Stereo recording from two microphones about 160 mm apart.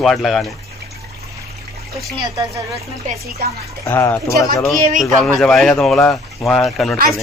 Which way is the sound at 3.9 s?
15° left (ahead or behind).